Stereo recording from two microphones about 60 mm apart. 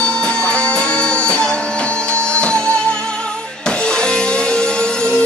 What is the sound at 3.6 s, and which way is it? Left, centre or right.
Music, centre.